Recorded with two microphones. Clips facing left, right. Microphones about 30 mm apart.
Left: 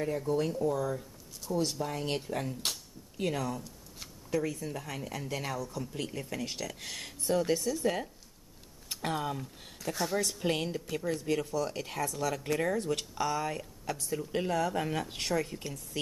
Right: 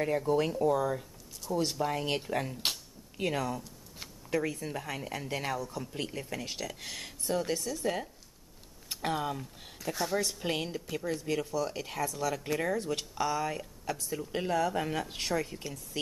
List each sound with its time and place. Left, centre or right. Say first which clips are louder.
0.3 s speech: right 2 dB; right
3.4 s a sound: right 1 dB; centre
4.3 s a woman's voice: even; centre
6.0 s speech: left 1 dB; centre